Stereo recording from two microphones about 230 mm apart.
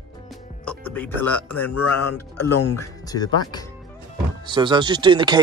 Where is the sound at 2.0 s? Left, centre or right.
Left.